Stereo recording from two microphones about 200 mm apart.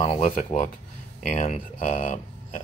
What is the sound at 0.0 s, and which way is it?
Speech, 35° left (ahead or behind).